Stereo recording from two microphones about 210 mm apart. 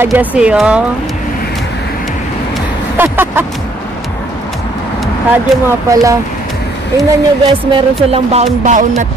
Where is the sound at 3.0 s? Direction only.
10° right (ahead or behind).